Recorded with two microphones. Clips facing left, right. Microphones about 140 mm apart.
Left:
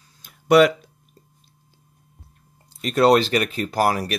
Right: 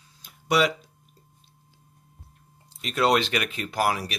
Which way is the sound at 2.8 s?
40° left (ahead or behind).